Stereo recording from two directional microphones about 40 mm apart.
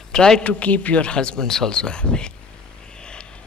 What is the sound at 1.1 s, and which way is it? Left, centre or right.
A woman's voice, left.